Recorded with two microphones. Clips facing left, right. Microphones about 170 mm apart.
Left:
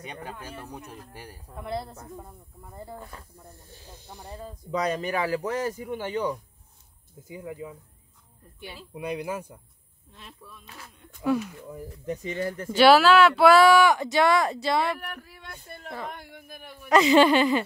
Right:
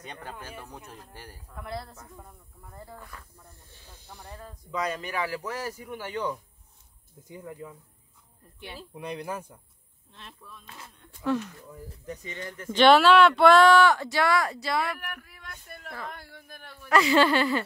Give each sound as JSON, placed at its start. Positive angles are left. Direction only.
{"t": 0.0, "sound": "speech", "side_deg": 10}
{"t": 4.6, "sound": "speech", "side_deg": 35}
{"t": 5.7, "sound": "speech", "side_deg": 20}
{"t": 7.2, "sound": "speech", "side_deg": 5}
{"t": 8.9, "sound": "speech", "side_deg": 5}
{"t": 11.9, "sound": "speech", "side_deg": 25}
{"t": 12.7, "sound": "speech", "side_deg": 5}